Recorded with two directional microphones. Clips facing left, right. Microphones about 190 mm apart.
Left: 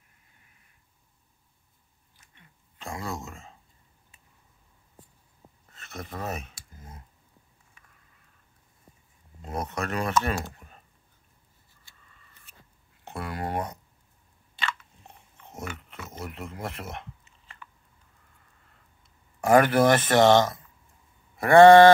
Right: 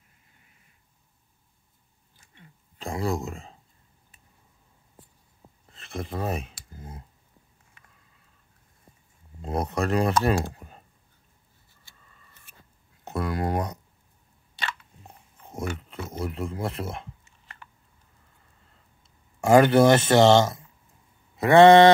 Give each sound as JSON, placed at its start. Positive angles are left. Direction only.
{"t": 2.8, "sound": "speech", "side_deg": -35}
{"t": 5.7, "sound": "a sound", "side_deg": -30}
{"t": 9.4, "sound": "speech", "side_deg": -35}
{"t": 10.5, "sound": "computer keyboard", "side_deg": -35}
{"t": 13.0, "sound": "speech", "side_deg": -40}
{"t": 15.3, "sound": "speech", "side_deg": -35}
{"t": 19.4, "sound": "speech", "side_deg": -25}